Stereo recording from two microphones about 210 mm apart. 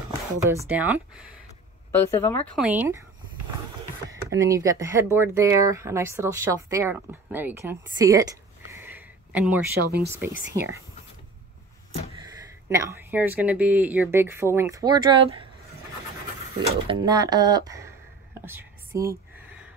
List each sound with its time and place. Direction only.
0.7 s speech: 5° right (ahead or behind)
1.9 s speech: 10° left (ahead or behind); by 3.1 s 10° right (ahead or behind)
4.1 s speech: 15° right (ahead or behind)
12.6 s speech: 15° right (ahead or behind)
16.5 s speech: 20° right (ahead or behind)
18.4 s whispering: 10° right (ahead or behind)